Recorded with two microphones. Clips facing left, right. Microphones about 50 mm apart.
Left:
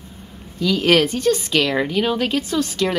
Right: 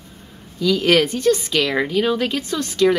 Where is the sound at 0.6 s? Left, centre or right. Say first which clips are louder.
Even; centre.